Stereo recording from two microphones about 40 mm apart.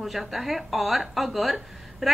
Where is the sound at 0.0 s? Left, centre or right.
Centre.